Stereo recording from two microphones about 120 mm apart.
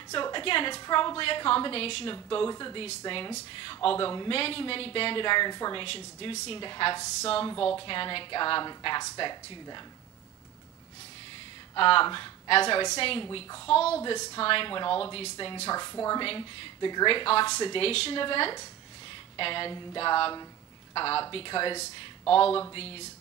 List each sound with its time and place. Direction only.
0.1 s a woman's voice: 45° left (ahead or behind)
2.5 s a woman's voice: 35° left (ahead or behind)
7.2 s a woman's voice: 55° left (ahead or behind); by 9.8 s 35° left (ahead or behind)
11.7 s a woman's voice: 45° left (ahead or behind)
14.0 s a woman's voice: 40° left (ahead or behind)
15.7 s a woman's voice: 30° left (ahead or behind)
16.2 s a woman's voice: 40° left (ahead or behind)